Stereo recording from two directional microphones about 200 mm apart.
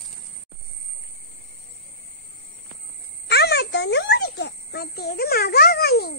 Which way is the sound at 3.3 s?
55° left (ahead or behind).